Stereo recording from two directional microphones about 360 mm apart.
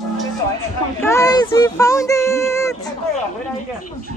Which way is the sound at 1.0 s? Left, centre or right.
Centre.